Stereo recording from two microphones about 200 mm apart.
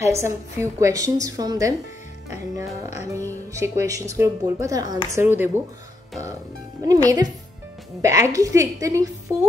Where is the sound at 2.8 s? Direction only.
15° right (ahead or behind).